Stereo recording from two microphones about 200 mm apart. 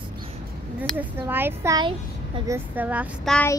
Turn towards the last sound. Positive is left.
turn(degrees=5)  # may be behind; listen again after turning